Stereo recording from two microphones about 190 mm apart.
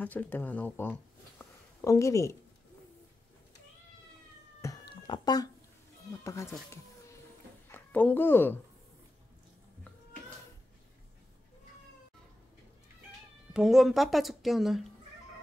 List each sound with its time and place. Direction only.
0.0 s speech: 10° left (ahead or behind)
5.0 s speech: 20° left (ahead or behind)
7.6 s a woman's voice: 10° left (ahead or behind)
13.5 s speech: centre (ahead or behind)